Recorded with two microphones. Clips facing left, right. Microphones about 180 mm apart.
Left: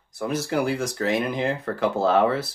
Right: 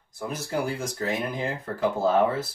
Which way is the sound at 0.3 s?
75° left (ahead or behind).